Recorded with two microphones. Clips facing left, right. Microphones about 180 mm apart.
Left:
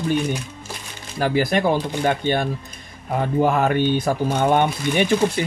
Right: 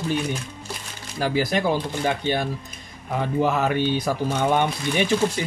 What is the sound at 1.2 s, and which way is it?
Speech, 55° left (ahead or behind).